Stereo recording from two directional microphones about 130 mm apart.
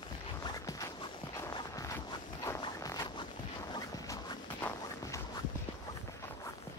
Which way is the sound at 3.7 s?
35° left (ahead or behind).